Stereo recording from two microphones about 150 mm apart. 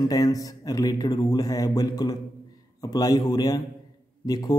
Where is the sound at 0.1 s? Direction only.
25° left (ahead or behind).